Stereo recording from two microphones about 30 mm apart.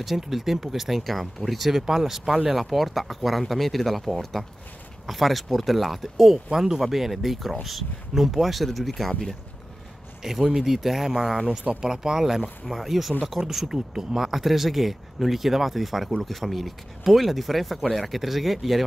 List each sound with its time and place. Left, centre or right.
0.0 s speech: centre
10.2 s speech: centre
12.6 s speech: centre